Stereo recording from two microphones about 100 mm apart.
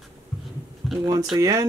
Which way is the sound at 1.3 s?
35° right (ahead or behind).